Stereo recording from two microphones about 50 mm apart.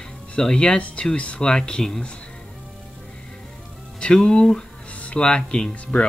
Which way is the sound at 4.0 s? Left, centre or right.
Centre.